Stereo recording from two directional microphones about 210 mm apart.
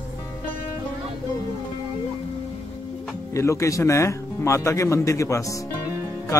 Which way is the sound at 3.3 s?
15° left (ahead or behind).